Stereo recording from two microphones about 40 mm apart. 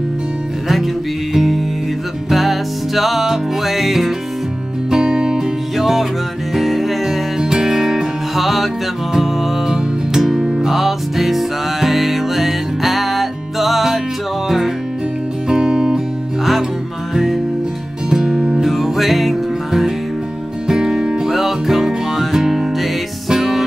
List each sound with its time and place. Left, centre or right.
1.3 s music: centre
4.9 s music: centre
5.8 s music: centre
7.4 s music: centre
8.4 s music: centre
15.4 s music: centre
17.1 s music: centre
18.6 s music: centre
20.6 s music: centre
21.3 s music: centre